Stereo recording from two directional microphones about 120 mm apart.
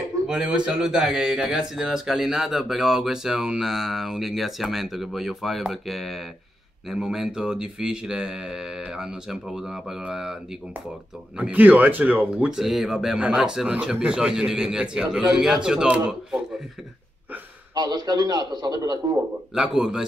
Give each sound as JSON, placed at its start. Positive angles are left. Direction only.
{"t": 0.3, "sound": "a man's voice", "side_deg": -5}
{"t": 11.3, "sound": "a man's voice", "side_deg": -10}
{"t": 17.7, "sound": "a man's voice", "side_deg": -35}
{"t": 19.5, "sound": "a man's voice", "side_deg": -5}